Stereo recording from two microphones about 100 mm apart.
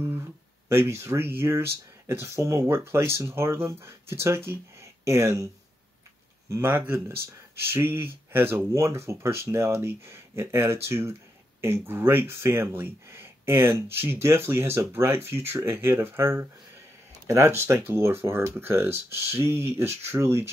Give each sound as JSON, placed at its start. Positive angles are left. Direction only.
{"t": 0.7, "sound": "speech", "side_deg": -25}
{"t": 6.5, "sound": "speech", "side_deg": -20}